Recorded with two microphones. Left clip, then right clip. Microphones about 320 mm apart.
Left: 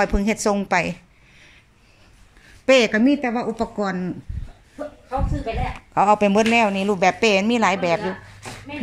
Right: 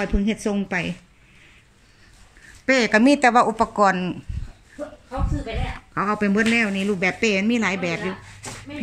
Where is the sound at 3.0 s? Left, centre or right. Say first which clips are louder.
Right 5 dB; right.